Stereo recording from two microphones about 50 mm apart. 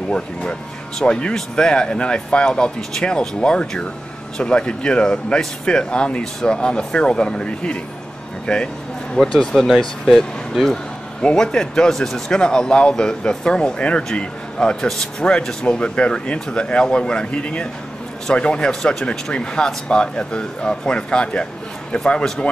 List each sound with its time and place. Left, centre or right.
0.1 s speech: centre
11.2 s a man's voice: centre